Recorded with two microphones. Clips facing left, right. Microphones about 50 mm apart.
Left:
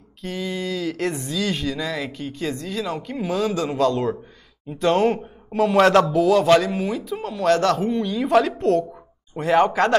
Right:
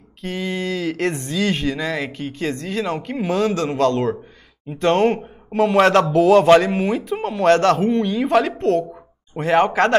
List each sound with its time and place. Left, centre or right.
0.2 s a sound: right
1.2 s speech: right
4.7 s speech: right
6.0 s speech: right